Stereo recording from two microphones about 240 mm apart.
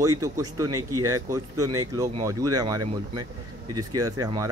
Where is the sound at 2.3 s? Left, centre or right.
Centre.